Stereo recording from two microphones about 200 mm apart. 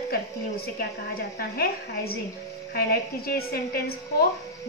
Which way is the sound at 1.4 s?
50° left (ahead or behind).